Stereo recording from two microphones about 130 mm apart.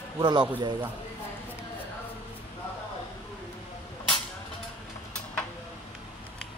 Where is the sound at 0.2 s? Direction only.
35° right (ahead or behind).